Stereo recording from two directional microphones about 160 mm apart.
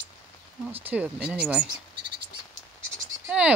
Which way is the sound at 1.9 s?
30° right (ahead or behind).